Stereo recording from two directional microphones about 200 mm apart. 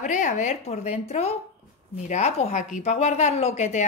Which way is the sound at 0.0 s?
40° left (ahead or behind).